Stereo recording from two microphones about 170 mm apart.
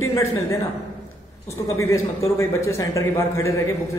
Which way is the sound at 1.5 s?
15° left (ahead or behind).